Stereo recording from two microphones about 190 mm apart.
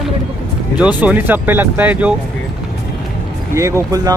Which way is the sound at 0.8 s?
5° right (ahead or behind).